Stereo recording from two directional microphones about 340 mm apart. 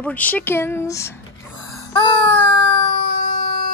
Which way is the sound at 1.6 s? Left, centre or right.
Centre.